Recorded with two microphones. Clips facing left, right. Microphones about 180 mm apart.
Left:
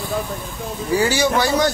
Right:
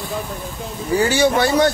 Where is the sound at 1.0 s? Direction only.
55° right (ahead or behind).